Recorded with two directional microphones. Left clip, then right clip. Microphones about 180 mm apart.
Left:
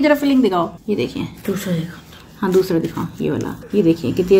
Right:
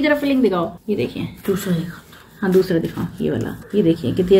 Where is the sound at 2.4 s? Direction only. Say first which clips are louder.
Left 1 dB; 25° left (ahead or behind).